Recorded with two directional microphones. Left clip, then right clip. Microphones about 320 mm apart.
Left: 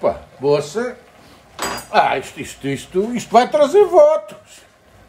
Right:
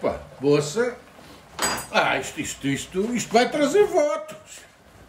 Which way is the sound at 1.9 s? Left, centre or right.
Centre.